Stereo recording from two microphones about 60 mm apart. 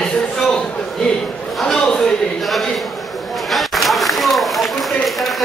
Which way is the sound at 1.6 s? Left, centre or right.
Centre.